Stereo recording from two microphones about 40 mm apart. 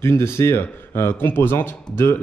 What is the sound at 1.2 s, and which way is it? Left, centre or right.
Speech, left.